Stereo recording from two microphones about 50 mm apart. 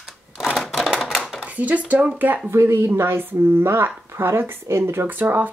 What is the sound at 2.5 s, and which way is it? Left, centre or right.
Speech, right.